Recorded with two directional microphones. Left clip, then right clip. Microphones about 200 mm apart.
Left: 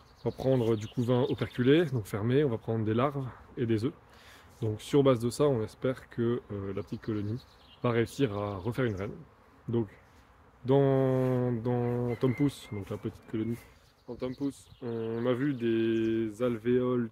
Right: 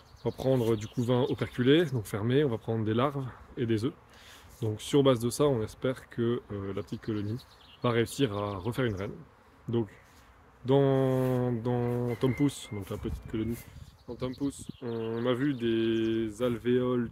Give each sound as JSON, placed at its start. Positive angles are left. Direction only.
{"t": 0.2, "sound": "speech", "side_deg": -10}